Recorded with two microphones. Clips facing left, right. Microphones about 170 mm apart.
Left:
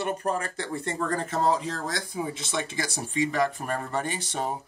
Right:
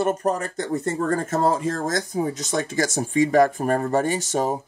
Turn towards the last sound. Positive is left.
turn(degrees=-45)  # may be behind; listen again after turning